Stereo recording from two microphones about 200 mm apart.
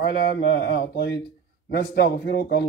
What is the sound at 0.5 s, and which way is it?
Speech, 65° left (ahead or behind).